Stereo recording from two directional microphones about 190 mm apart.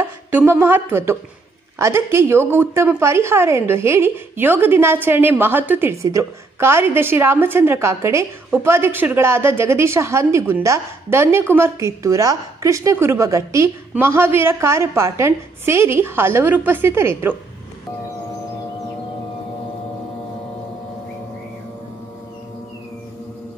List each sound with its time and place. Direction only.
0.3 s speech: 10° right (ahead or behind)